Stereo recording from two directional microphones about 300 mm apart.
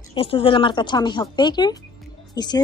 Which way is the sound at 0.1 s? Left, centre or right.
Centre.